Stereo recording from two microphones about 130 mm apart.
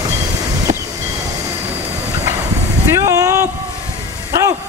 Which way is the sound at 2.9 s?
25° right (ahead or behind).